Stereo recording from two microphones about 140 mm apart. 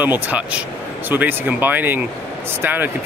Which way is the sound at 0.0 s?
10° right (ahead or behind).